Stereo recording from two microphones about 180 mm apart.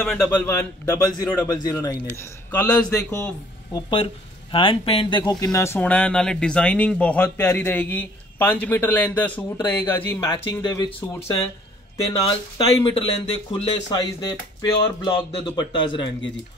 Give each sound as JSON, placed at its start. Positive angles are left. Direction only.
{"t": 0.0, "sound": "a man's voice", "side_deg": 5}
{"t": 3.9, "sound": "a man's voice", "side_deg": 30}